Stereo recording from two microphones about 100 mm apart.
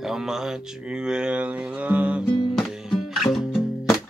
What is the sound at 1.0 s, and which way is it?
Music, 10° right (ahead or behind).